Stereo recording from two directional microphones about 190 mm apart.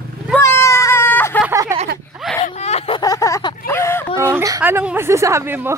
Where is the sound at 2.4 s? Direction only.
35° left (ahead or behind).